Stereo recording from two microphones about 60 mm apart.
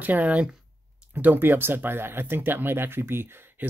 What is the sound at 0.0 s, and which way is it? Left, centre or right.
Speech, right.